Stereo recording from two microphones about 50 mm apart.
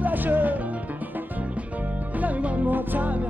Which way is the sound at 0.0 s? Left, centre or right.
Right.